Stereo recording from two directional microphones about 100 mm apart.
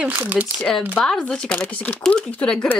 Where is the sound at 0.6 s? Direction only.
5° left (ahead or behind).